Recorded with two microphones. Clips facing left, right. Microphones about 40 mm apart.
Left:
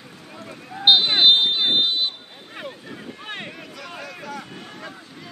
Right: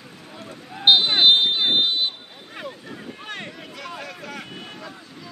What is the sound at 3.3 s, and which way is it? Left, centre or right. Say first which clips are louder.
Boat: left 1 dB; centre.